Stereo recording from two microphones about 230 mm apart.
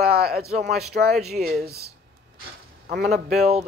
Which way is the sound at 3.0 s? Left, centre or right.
Centre.